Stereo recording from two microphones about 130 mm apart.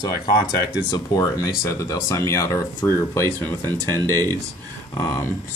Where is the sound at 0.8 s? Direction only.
30° left (ahead or behind).